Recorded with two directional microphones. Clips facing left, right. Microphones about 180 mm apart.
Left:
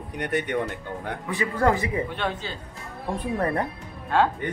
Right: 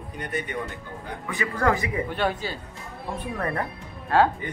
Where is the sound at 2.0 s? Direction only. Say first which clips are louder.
Right 3 dB; 5° right (ahead or behind).